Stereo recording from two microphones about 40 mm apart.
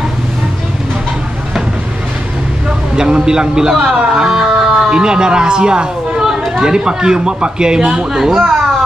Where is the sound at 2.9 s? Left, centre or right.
Centre.